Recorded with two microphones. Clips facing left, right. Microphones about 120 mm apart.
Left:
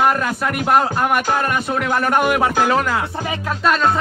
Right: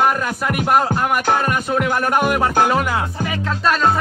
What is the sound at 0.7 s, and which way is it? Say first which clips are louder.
Music: left 1 dB; centre (ahead or behind).